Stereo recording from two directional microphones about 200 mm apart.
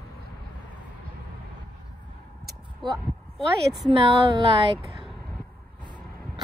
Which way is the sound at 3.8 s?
25° right (ahead or behind).